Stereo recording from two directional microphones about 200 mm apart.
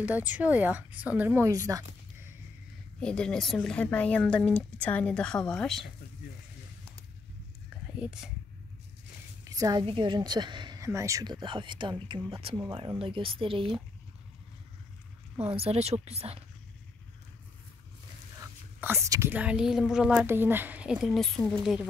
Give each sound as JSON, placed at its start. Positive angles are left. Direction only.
{"t": 0.0, "sound": "a woman's voice", "side_deg": -5}
{"t": 3.0, "sound": "speech", "side_deg": 5}
{"t": 8.0, "sound": "speech", "side_deg": -5}
{"t": 9.4, "sound": "a woman's voice", "side_deg": -15}
{"t": 15.5, "sound": "speech", "side_deg": -30}
{"t": 18.8, "sound": "speech", "side_deg": -15}